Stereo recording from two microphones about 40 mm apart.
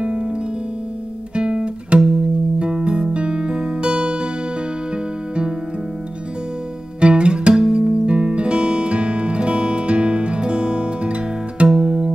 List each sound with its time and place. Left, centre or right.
0.0 s music: right
1.3 s guitar: right
2.6 s music: right
7.0 s music: right